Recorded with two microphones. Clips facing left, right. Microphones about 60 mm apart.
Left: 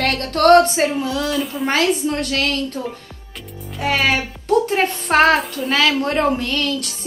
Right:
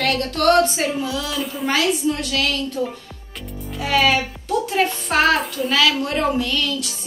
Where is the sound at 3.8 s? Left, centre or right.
Left.